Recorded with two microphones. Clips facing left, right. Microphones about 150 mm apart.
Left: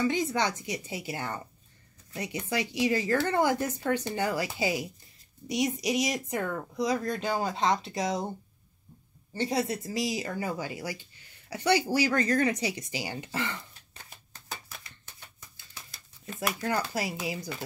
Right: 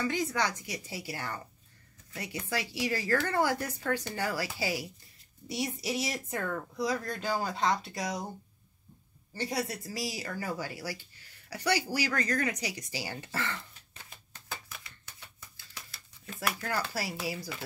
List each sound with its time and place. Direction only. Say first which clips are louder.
0.0 s speech: left 3 dB; 20° left (ahead or behind)
9.3 s speech: left 5 dB; 25° left (ahead or behind)
16.3 s speech: left 3 dB; 20° left (ahead or behind)